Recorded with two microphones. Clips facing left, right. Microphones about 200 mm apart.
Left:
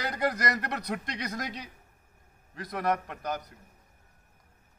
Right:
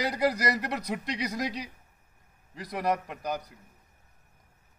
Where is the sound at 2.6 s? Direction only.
10° right (ahead or behind).